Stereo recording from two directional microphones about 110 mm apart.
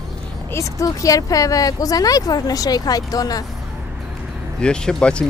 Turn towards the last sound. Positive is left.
turn(degrees=10)  # may be behind; listen again after turning